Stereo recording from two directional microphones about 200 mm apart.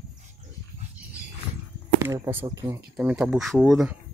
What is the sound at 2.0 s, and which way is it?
Speech, 15° right (ahead or behind).